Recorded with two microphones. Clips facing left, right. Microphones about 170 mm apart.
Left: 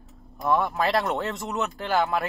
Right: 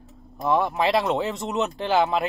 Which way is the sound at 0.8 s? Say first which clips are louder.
Right 3 dB; centre (ahead or behind).